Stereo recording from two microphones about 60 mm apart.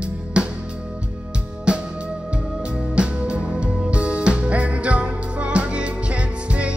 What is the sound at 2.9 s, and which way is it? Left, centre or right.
Music, centre.